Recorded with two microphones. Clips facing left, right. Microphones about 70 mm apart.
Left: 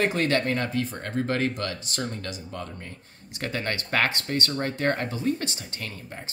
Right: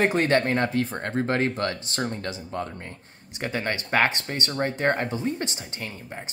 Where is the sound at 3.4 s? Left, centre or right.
Centre.